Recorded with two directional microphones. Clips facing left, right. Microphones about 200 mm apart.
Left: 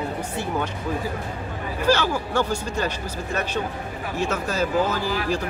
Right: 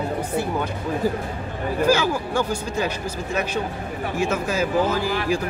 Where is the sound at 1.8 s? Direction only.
10° right (ahead or behind).